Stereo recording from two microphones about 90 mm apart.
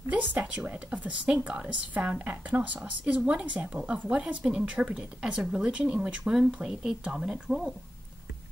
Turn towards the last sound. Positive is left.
turn(degrees=-5)  # may be behind; listen again after turning